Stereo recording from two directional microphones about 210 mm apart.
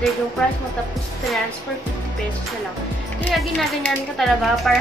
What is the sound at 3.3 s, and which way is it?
A woman's voice, centre (ahead or behind).